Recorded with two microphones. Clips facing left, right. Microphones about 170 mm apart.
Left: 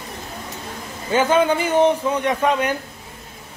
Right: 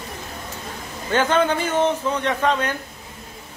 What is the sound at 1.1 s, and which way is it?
A man's voice, 10° left (ahead or behind).